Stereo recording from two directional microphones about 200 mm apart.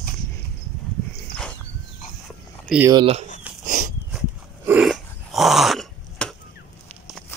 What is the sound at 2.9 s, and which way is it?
Speech, 25° right (ahead or behind).